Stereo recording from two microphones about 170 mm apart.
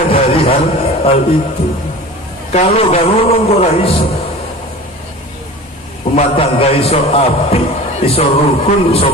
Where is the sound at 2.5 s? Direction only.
35° left (ahead or behind).